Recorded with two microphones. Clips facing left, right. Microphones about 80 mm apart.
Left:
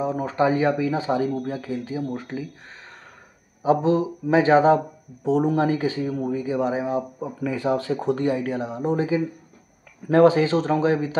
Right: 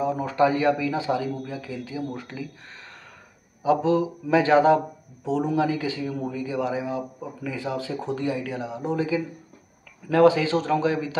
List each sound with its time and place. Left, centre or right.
0.0 s speech: left
3.6 s speech: left
7.4 s speech: left